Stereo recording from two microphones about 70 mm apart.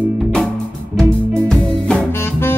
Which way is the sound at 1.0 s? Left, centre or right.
Right.